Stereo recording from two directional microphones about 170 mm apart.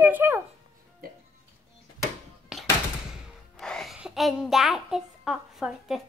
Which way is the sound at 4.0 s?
Centre (ahead or behind).